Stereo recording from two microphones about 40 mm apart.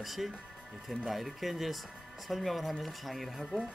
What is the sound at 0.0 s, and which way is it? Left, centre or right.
Speech, centre.